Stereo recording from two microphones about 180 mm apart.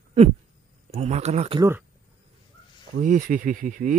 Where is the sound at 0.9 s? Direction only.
40° right (ahead or behind).